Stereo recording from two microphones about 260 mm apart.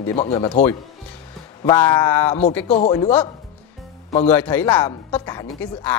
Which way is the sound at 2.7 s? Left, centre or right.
Left.